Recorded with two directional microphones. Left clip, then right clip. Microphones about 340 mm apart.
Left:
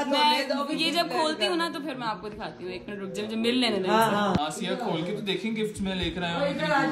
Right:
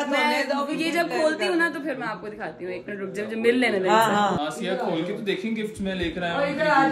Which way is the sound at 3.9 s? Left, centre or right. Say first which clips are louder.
Right 4 dB; right.